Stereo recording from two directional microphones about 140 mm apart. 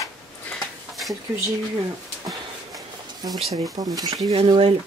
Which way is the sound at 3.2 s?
25° right (ahead or behind).